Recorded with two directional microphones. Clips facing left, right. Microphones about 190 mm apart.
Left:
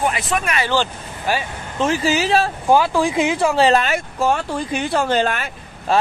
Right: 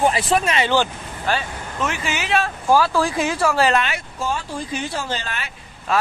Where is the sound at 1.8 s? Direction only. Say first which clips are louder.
Left 7 dB; 35° left (ahead or behind).